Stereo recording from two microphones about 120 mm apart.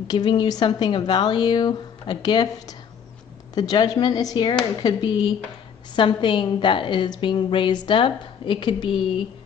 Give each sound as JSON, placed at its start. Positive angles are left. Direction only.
{"t": 0.1, "sound": "a woman's voice", "side_deg": 40}